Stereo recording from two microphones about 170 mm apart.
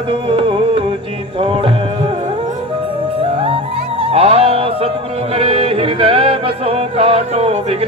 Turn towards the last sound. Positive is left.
turn(degrees=-35)  # may be behind; listen again after turning